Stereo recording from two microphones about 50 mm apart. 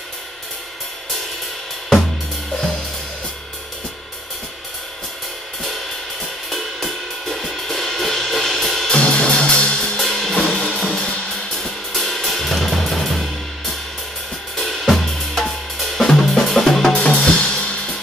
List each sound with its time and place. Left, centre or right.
6.5 s music: centre
8.9 s music: centre
9.9 s drum kit: centre
10.7 s music: centre
11.5 s cymbal: centre
14.6 s drum kit: centre
16.9 s music: centre